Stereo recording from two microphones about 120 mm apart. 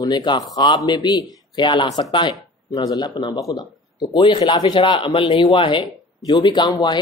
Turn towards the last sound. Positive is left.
turn(degrees=40)  # may be behind; listen again after turning